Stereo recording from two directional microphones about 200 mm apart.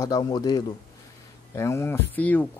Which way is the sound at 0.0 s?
20° left (ahead or behind).